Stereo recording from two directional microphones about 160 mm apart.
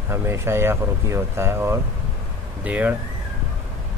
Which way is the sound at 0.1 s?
15° right (ahead or behind).